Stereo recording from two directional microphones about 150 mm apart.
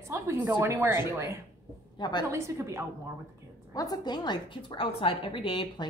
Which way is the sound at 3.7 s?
25° left (ahead or behind).